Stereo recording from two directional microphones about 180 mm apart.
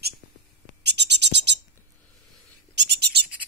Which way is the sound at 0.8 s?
70° right (ahead or behind).